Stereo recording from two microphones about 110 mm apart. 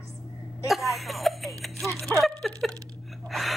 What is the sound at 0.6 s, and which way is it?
Speech, centre (ahead or behind).